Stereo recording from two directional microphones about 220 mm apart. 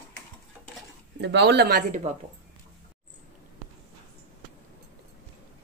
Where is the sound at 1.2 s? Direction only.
50° right (ahead or behind).